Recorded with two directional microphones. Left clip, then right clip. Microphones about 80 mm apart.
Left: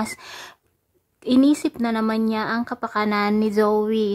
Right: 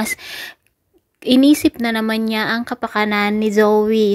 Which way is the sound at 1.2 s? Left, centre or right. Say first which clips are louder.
Right 6 dB; centre.